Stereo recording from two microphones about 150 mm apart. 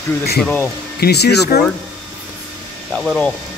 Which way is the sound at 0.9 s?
90° left.